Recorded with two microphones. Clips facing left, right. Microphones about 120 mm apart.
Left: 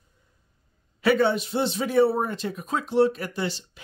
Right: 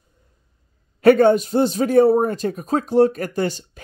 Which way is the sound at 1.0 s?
45° right (ahead or behind).